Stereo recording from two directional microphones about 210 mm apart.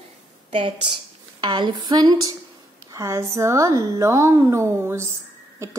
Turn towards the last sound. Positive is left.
turn(degrees=-15)  # may be behind; listen again after turning